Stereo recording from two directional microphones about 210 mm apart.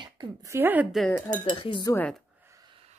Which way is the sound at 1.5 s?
25° left (ahead or behind).